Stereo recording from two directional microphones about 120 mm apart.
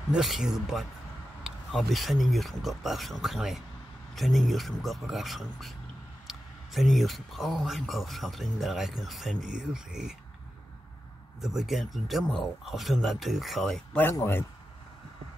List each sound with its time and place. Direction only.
0.1 s speech: 5° right (ahead or behind)
11.4 s speech: centre (ahead or behind)
14.1 s a man's voice: 20° left (ahead or behind)